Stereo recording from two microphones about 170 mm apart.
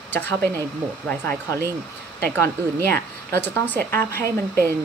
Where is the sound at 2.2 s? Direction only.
10° left (ahead or behind).